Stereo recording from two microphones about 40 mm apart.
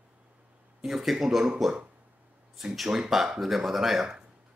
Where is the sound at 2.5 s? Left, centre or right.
Centre.